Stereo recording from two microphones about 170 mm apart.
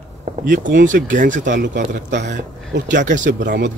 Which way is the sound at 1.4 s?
85° right.